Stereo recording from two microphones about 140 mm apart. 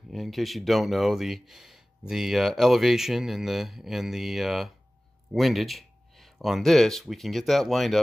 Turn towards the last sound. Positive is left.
turn(degrees=0)  # may be behind; listen again after turning